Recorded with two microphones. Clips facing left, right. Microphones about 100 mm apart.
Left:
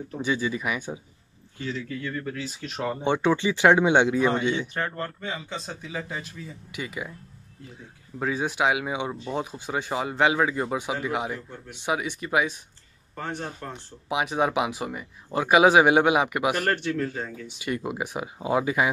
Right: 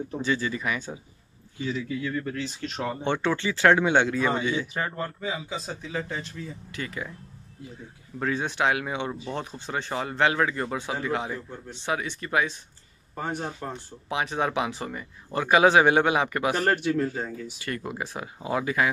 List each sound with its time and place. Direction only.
0.2 s speech: 10° left (ahead or behind)
1.6 s speech: 15° right (ahead or behind)
3.0 s speech: 15° left (ahead or behind)
4.7 s speech: 5° right (ahead or behind); by 7.1 s 10° left (ahead or behind)
8.2 s speech: 10° left (ahead or behind)
13.1 s speech: 15° right (ahead or behind)
14.0 s speech: 10° left (ahead or behind)
16.7 s speech: 10° right (ahead or behind)
17.6 s speech: 15° left (ahead or behind)